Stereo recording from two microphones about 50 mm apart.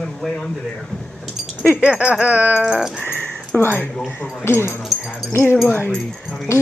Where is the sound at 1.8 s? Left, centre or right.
Right.